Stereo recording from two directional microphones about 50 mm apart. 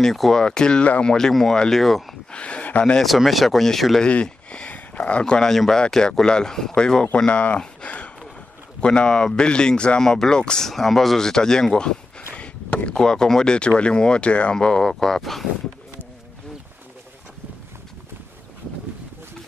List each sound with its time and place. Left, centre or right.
0.0 s speech: centre
2.3 s speech: left
3.3 s speech: centre
4.0 s speech: left
7.2 s speech: left
10.7 s speech: centre
12.6 s a sound: left
12.9 s speech: centre